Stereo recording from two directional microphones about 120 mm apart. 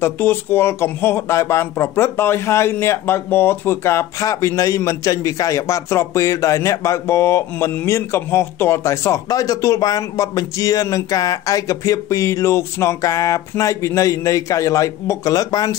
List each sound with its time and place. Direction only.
0.0 s speech: 20° left (ahead or behind)